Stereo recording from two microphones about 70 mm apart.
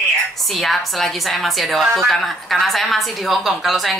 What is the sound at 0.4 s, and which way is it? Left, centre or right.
A woman's voice, centre.